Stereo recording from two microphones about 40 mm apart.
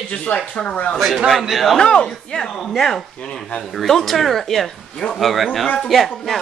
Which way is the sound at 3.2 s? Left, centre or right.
Left.